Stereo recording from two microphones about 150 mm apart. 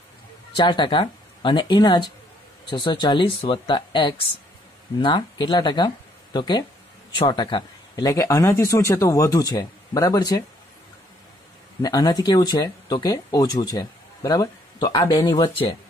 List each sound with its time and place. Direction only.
0.6 s speech: 35° left (ahead or behind)
11.8 s speech: 25° left (ahead or behind)